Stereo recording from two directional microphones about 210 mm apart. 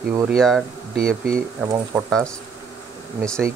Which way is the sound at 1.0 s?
45° right (ahead or behind).